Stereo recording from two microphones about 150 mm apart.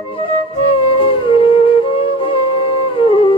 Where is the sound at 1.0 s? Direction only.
35° left (ahead or behind).